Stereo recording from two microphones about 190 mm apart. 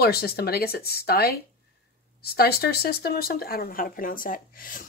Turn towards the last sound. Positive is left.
turn(degrees=45)  # may be behind; listen again after turning